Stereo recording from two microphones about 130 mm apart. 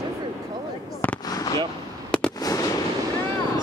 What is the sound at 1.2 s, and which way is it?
Fireworks, 30° left (ahead or behind).